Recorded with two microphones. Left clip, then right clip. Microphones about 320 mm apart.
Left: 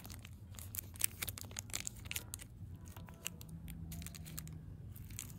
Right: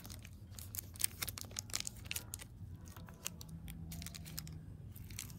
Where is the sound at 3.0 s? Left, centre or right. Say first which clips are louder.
Even; centre.